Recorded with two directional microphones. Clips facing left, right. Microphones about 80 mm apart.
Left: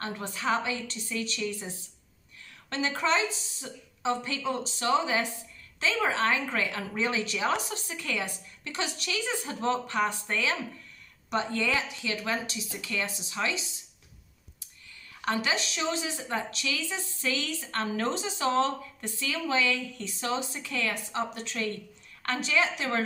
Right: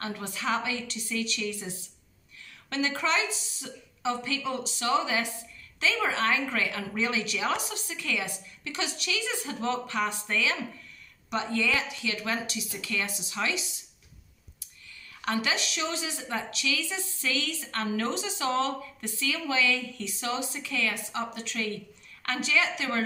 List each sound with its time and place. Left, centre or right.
0.0 s speech: left
2.7 s a woman's voice: left
13.4 s speech: centre
15.2 s a woman's voice: left